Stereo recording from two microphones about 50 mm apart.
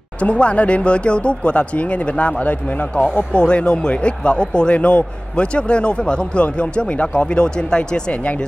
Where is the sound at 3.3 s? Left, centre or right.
Centre.